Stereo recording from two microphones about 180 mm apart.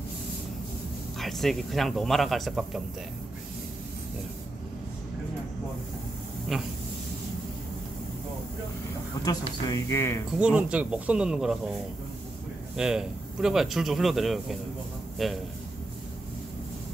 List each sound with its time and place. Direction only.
1.2 s speech: centre (ahead or behind)
6.5 s speech: centre (ahead or behind)
9.2 s speech: 20° left (ahead or behind)
10.3 s speech: 5° right (ahead or behind)
12.7 s speech: 5° right (ahead or behind)